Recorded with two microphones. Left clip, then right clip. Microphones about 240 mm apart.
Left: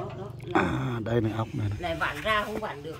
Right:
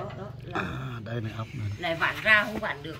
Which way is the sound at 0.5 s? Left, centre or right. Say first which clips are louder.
Left 7 dB; left.